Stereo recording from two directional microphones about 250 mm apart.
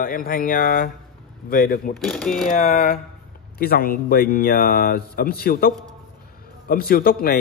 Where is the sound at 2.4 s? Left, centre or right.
Left.